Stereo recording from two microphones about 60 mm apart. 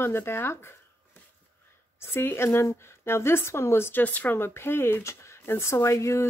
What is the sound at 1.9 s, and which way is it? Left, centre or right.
Speech, left.